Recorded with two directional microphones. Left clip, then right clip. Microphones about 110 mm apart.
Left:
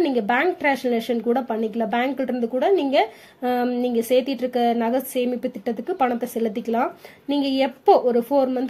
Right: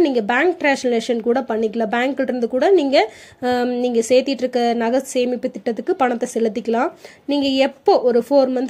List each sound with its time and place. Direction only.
0.0 s speech: 25° right (ahead or behind)